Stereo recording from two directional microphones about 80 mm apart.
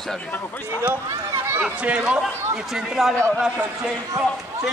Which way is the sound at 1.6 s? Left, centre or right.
Centre.